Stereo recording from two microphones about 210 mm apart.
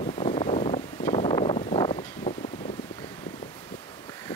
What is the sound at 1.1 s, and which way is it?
Wind noise, 25° left (ahead or behind).